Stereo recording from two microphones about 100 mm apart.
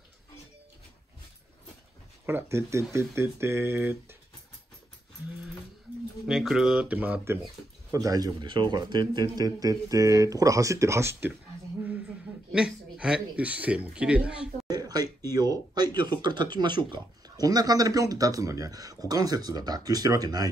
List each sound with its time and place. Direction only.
2.2 s speech: 25° right (ahead or behind)
6.2 s speech: 5° right (ahead or behind)
7.9 s speech: 35° right (ahead or behind)
12.5 s speech: 10° right (ahead or behind)
14.7 s speech: 40° right (ahead or behind)